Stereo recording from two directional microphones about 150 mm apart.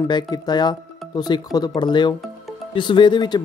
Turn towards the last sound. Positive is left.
turn(degrees=30)  # may be behind; listen again after turning